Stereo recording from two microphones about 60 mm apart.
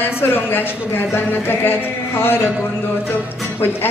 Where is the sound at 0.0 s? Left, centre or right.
Left.